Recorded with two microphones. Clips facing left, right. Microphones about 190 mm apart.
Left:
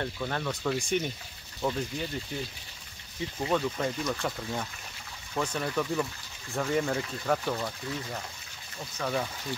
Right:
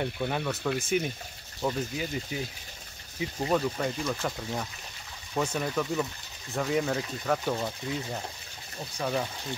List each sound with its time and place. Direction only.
0.0 s speech: 10° right (ahead or behind)
7.5 s speech: 25° right (ahead or behind)
8.9 s speech: 10° right (ahead or behind)